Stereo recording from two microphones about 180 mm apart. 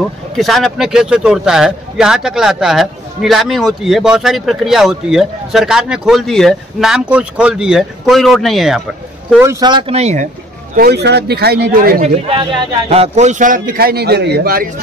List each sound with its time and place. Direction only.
0.4 s speech: centre (ahead or behind)
9.4 s speech: 20° right (ahead or behind); by 10.2 s 35° right (ahead or behind)
10.8 s speech: 65° right (ahead or behind)
12.0 s a man's voice: 30° right (ahead or behind); by 14.7 s 55° right (ahead or behind)